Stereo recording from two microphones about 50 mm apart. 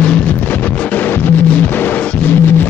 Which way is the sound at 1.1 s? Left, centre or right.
Left.